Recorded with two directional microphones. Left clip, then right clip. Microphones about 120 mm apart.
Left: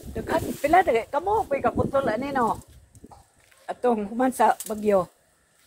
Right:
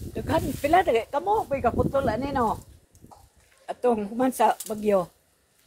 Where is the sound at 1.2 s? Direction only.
15° left (ahead or behind).